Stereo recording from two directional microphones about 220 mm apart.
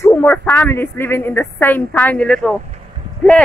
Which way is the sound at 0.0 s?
10° left (ahead or behind).